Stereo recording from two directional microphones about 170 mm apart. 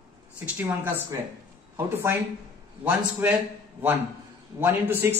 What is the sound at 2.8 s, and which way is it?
Speech, 10° right (ahead or behind).